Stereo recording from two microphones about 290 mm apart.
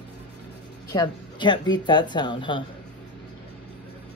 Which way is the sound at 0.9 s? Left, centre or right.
Centre.